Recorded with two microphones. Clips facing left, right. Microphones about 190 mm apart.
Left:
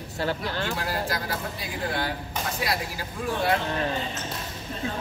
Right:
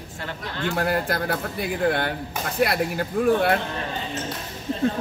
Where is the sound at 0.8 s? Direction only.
55° right (ahead or behind).